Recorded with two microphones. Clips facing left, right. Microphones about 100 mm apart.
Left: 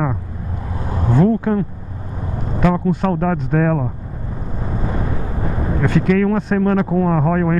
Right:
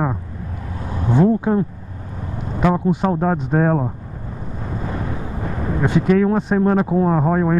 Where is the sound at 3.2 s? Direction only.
30° right (ahead or behind).